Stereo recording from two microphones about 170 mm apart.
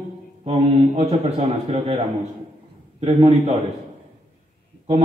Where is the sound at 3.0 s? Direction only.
35° right (ahead or behind).